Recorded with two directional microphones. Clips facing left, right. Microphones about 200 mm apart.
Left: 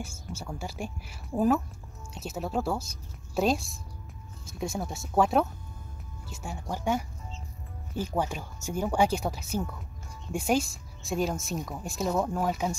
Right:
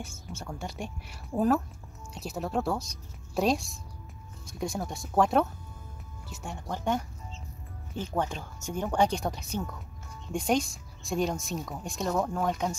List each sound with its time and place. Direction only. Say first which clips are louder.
0.0 s speech: left 2 dB; 30° left (ahead or behind)
0.5 s speech: left 1 dB; 5° left (ahead or behind)